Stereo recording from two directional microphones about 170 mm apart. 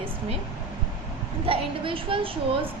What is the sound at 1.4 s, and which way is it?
Speech, 35° right (ahead or behind).